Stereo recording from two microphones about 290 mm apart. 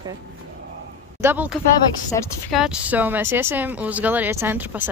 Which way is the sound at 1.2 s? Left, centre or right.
Centre.